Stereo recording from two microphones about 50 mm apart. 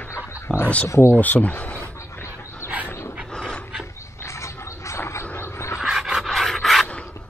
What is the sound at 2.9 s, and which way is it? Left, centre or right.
Dog, left.